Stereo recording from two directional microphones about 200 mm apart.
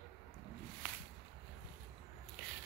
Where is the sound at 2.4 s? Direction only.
5° left (ahead or behind).